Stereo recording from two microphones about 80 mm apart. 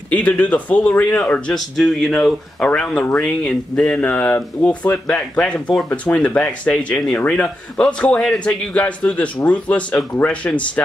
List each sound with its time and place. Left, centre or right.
0.1 s speech: centre
1.5 s a man's voice: centre